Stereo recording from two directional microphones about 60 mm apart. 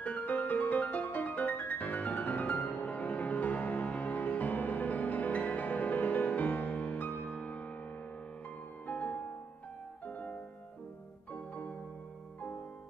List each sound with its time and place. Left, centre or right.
0.0 s music: left
8.8 s music: left
11.3 s music: left